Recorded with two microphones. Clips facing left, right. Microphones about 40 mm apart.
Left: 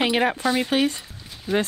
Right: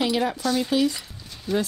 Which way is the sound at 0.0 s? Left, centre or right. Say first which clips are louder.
Left 3 dB; left.